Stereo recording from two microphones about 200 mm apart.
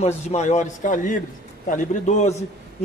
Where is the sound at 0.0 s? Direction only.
35° left (ahead or behind).